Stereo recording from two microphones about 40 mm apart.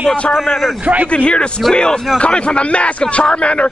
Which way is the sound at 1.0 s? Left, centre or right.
Left.